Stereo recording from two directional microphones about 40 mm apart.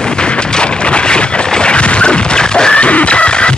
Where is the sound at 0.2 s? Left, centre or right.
Left.